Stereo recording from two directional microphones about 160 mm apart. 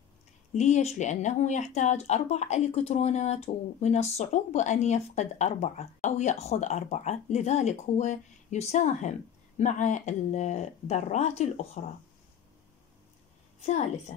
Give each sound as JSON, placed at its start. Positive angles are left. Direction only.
{"t": 0.6, "sound": "speech", "side_deg": 45}
{"t": 13.6, "sound": "speech", "side_deg": 45}